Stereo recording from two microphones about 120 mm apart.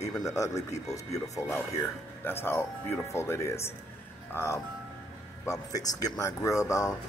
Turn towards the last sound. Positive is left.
turn(degrees=25)  # may be behind; listen again after turning